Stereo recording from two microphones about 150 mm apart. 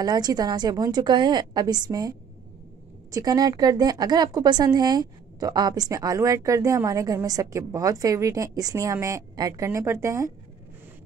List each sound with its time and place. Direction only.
0.0 s speech: 25° right (ahead or behind)